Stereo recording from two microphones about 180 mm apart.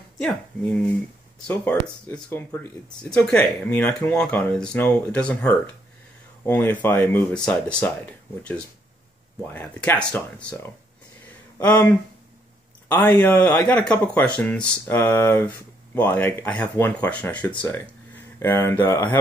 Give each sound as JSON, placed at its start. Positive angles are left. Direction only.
{"t": 0.2, "sound": "speech", "side_deg": 5}